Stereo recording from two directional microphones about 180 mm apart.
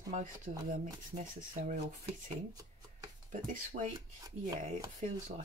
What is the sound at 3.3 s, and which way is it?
Speech, 45° right (ahead or behind).